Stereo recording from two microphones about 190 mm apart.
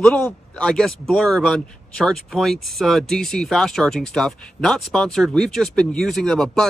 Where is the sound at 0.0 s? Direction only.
5° left (ahead or behind).